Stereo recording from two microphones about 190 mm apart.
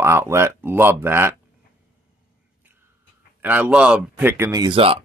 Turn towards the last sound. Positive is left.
turn(degrees=-25)  # may be behind; listen again after turning